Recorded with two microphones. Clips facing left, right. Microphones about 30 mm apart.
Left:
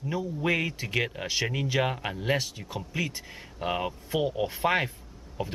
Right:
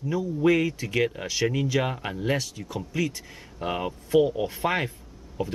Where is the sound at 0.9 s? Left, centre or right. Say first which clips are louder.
Right 2 dB; centre.